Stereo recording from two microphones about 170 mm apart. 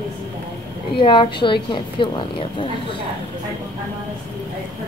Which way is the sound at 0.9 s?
30° left (ahead or behind).